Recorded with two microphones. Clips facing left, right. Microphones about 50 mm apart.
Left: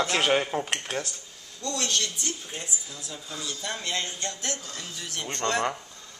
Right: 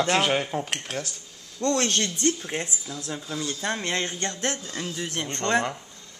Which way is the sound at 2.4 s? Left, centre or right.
Right.